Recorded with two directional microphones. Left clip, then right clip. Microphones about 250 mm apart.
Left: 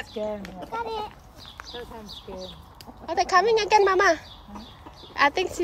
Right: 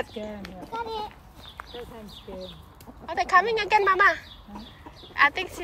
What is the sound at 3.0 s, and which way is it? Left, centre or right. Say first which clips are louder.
A woman's voice: even; centre.